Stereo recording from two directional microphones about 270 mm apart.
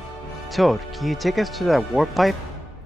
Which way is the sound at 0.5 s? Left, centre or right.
Centre.